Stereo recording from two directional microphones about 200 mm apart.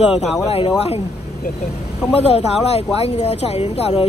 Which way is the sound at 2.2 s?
30° left (ahead or behind).